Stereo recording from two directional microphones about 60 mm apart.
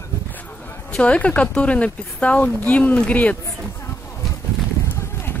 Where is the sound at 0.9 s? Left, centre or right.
Centre.